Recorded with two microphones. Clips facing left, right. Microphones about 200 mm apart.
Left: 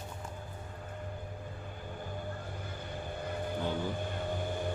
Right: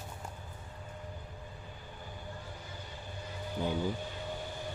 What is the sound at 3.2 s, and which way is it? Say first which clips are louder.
Vehicle: left 5 dB; 55° left (ahead or behind).